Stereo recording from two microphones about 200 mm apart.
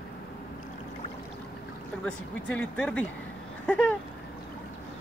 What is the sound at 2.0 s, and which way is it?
Speech, 5° left (ahead or behind).